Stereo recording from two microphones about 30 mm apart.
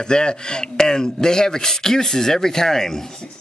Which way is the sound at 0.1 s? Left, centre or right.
Left.